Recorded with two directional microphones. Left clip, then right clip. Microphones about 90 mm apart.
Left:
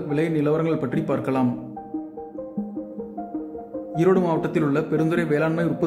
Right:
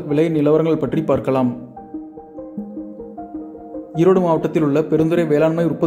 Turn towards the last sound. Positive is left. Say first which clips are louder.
# right 6 dB
turn(degrees=-40)  # may be behind; listen again after turning